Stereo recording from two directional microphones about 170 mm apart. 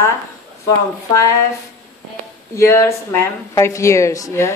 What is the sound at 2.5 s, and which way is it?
Speech, 15° left (ahead or behind).